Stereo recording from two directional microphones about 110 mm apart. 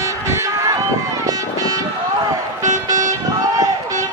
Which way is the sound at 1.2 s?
35° right (ahead or behind).